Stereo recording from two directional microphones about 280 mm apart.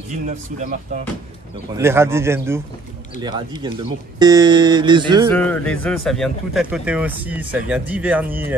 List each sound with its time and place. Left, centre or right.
0.3 s speech: right
1.8 s speech: centre
5.3 s speech: centre